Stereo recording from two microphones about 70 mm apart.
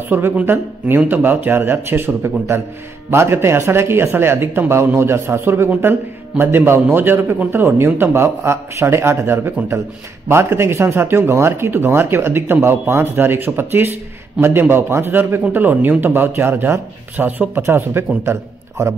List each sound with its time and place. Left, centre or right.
0.1 s speech: right